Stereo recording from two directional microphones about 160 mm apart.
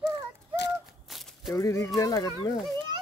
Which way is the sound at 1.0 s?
Centre (ahead or behind).